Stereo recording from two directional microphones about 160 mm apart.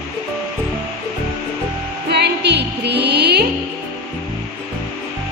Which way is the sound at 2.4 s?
90° right.